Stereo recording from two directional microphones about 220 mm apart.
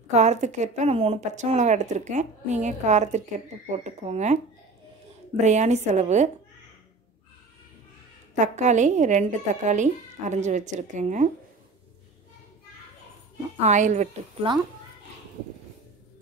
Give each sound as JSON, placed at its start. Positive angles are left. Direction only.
{"t": 0.1, "sound": "a woman's voice", "side_deg": -30}
{"t": 5.4, "sound": "a woman's voice", "side_deg": -30}
{"t": 8.4, "sound": "a woman's voice", "side_deg": -35}
{"t": 13.6, "sound": "a woman's voice", "side_deg": -35}